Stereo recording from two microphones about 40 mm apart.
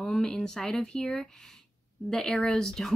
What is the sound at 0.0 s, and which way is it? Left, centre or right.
Speech, centre.